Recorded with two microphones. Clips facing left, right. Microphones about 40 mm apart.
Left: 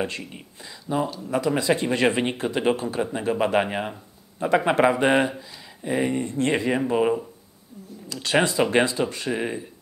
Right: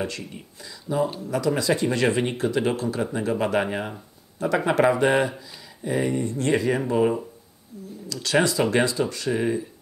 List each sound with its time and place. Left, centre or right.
0.2 s speech: left
3.6 s speech: centre